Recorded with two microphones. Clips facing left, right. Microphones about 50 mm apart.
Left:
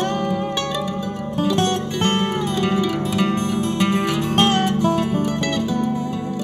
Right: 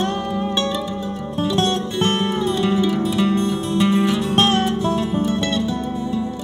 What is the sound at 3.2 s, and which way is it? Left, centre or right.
Music, left.